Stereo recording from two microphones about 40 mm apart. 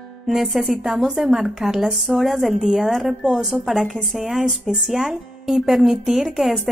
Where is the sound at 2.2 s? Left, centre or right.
Centre.